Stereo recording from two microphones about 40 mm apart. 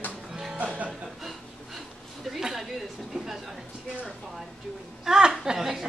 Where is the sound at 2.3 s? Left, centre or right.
Centre.